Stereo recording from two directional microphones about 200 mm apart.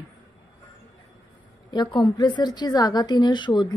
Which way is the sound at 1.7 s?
20° left (ahead or behind).